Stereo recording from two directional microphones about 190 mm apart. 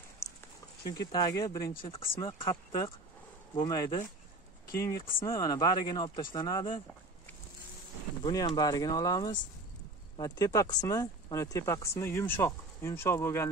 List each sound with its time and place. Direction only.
1.1 s speech: 20° left (ahead or behind)
8.2 s speech: 20° left (ahead or behind)